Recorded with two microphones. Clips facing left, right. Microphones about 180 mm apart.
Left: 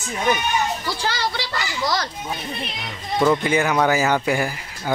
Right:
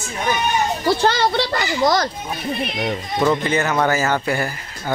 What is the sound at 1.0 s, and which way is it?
A child's voice, 60° right (ahead or behind).